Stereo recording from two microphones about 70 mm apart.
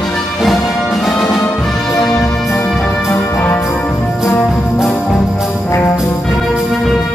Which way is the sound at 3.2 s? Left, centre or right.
Left.